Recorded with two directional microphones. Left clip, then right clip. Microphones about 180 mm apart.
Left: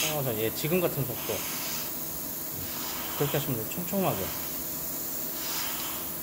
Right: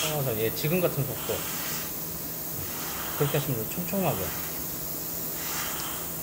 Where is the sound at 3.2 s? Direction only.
15° left (ahead or behind).